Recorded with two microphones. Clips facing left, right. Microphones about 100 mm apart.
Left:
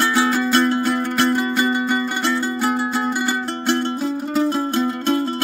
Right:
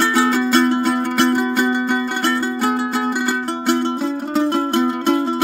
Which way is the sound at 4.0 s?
60° right (ahead or behind).